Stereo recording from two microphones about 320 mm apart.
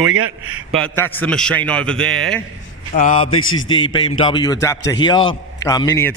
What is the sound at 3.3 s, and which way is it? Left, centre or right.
Speech, left.